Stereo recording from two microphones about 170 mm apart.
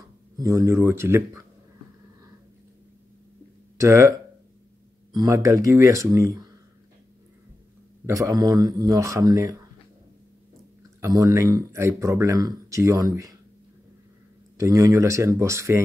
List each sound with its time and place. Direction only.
0.4 s speech: 20° right (ahead or behind)
3.8 s speech: 15° right (ahead or behind)
5.1 s speech: 20° right (ahead or behind)
8.1 s speech: 20° right (ahead or behind)
11.0 s speech: 20° right (ahead or behind)
14.6 s speech: 20° right (ahead or behind)